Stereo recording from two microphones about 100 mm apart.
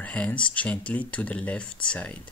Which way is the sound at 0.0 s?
15° left (ahead or behind).